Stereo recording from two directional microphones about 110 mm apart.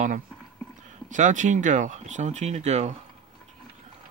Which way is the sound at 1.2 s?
90° right.